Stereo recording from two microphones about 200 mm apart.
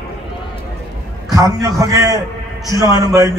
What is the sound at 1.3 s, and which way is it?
Speech, 15° right (ahead or behind).